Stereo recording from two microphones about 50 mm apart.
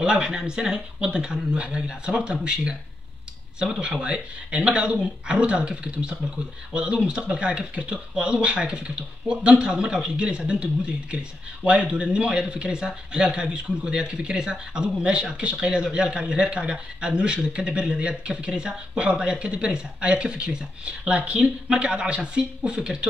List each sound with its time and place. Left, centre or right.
0.0 s speech: centre